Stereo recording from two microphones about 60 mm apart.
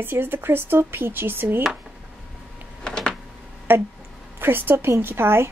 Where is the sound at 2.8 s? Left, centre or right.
Centre.